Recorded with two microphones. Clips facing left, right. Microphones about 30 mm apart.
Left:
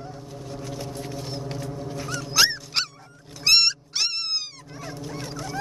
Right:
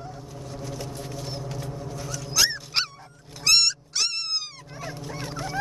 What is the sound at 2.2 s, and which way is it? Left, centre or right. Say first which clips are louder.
Dog: left 3 dB; left.